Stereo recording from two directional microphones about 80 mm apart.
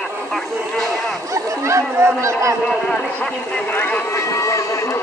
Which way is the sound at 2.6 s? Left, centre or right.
Centre.